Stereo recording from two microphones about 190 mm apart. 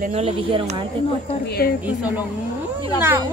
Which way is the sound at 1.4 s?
55° left (ahead or behind).